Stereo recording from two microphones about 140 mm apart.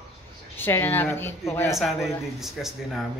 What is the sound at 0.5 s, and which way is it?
A woman's voice, 15° left (ahead or behind).